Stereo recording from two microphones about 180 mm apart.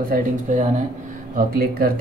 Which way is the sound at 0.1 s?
45° right (ahead or behind).